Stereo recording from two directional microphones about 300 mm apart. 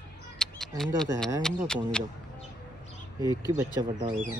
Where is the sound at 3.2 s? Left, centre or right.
Centre.